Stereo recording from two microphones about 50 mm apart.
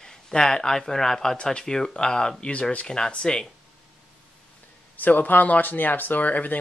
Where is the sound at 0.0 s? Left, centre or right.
Centre.